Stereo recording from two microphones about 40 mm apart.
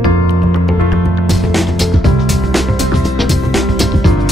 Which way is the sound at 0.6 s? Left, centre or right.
Centre.